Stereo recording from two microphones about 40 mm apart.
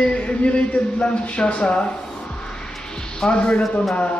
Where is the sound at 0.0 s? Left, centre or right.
Left.